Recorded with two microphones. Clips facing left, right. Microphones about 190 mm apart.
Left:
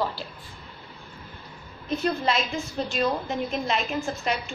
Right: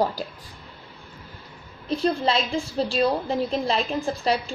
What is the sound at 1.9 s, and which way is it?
A woman's voice, 30° right (ahead or behind).